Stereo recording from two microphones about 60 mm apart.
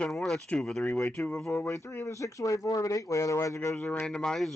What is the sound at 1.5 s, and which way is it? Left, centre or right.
Speech, left.